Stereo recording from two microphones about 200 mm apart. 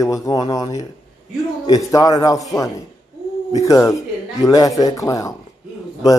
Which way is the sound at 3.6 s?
15° left (ahead or behind).